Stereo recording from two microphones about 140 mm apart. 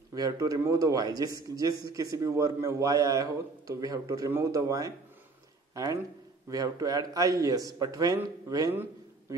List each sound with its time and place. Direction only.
0.1 s a man's voice: 25° right (ahead or behind)
6.5 s a man's voice: 25° right (ahead or behind)